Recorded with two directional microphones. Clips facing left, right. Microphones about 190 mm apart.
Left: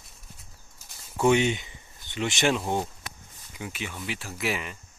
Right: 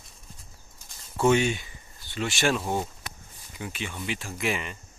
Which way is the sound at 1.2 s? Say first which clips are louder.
Even; 15° left (ahead or behind).